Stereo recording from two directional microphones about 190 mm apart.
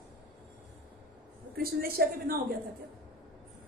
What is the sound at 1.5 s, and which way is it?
Speech, 50° right (ahead or behind).